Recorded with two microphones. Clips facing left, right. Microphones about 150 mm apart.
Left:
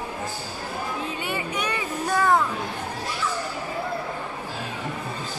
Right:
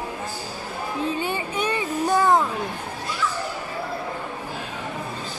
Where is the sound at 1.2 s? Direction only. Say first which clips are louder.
Right 3 dB; 30° right (ahead or behind).